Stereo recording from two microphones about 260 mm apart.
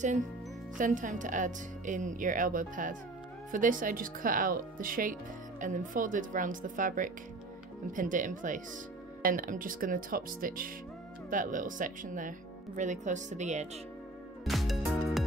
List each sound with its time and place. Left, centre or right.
0.7 s speech: right
14.4 s music: centre